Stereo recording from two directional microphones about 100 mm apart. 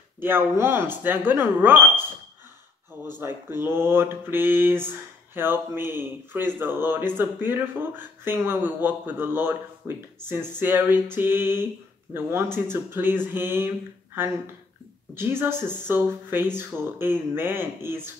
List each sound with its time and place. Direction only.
0.2 s speech: 20° right (ahead or behind)
3.2 s speech: 25° right (ahead or behind)
15.1 s speech: 20° right (ahead or behind)